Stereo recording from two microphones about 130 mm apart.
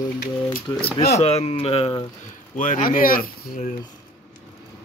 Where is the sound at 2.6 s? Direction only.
80° left.